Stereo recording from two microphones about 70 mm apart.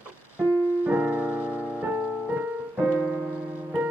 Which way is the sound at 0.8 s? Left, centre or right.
Right.